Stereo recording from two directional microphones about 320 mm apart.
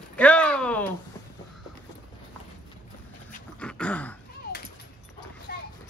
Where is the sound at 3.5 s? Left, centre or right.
Centre.